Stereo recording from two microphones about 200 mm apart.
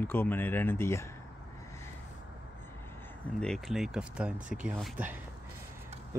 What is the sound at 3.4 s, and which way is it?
Speech, centre (ahead or behind).